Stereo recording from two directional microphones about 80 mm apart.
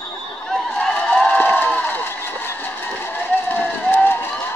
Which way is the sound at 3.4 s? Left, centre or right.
Left.